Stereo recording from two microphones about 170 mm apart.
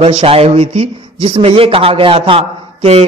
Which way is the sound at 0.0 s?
35° right (ahead or behind).